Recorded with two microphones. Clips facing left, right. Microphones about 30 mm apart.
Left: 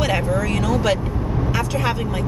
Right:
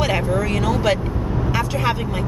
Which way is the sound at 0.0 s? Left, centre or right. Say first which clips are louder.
Even; centre.